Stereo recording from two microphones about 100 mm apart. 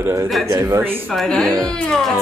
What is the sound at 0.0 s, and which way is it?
Speech, 30° right (ahead or behind).